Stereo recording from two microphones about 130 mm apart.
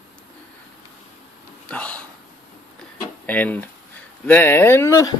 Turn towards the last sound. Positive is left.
turn(degrees=20)  # may be behind; listen again after turning